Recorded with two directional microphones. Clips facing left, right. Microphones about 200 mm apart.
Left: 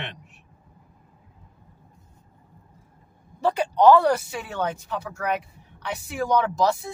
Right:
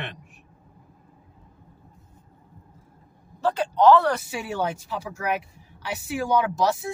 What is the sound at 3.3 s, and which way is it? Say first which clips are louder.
Speech: left 1 dB; 15° left (ahead or behind).